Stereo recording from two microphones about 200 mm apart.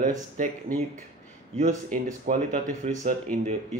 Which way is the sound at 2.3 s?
40° right (ahead or behind).